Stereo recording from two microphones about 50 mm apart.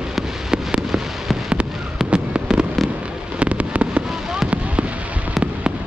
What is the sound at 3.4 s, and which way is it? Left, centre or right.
Fireworks, right.